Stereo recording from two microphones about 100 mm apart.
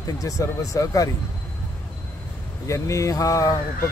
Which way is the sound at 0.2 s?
35° left (ahead or behind).